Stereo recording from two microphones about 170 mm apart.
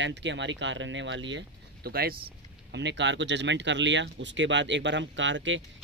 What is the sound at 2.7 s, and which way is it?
Speech, 90° right.